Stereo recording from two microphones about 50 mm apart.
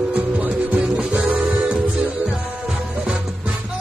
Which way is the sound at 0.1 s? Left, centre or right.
Right.